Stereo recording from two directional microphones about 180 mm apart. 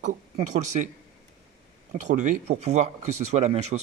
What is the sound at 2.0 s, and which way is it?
Speech, 40° right (ahead or behind).